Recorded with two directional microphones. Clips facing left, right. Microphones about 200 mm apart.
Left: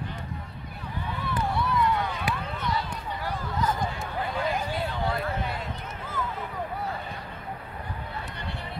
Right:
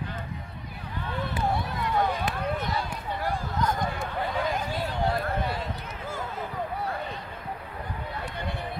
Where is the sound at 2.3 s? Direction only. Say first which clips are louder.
Right 1 dB; 50° right (ahead or behind).